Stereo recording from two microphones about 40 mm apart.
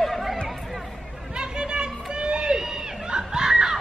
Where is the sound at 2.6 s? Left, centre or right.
Centre.